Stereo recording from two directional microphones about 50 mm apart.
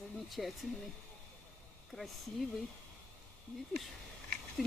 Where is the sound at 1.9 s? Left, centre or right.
Centre.